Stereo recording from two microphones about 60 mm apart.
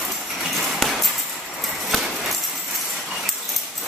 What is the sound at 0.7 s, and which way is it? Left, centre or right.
Clip-clop, centre.